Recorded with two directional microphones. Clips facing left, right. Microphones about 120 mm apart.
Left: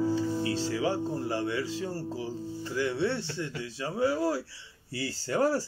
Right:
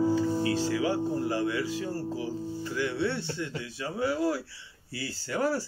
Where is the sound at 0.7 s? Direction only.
30° left (ahead or behind).